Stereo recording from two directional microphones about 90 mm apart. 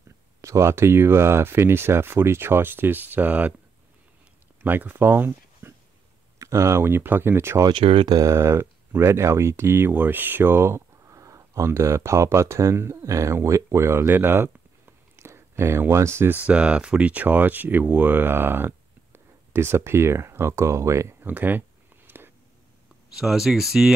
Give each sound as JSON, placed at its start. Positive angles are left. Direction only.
{"t": 0.4, "sound": "speech", "side_deg": -35}
{"t": 4.6, "sound": "speech", "side_deg": -20}
{"t": 6.3, "sound": "speech", "side_deg": -35}
{"t": 7.7, "sound": "speech", "side_deg": -80}
{"t": 8.1, "sound": "speech", "side_deg": -35}
{"t": 16.4, "sound": "speech", "side_deg": -10}
{"t": 23.1, "sound": "speech", "side_deg": -5}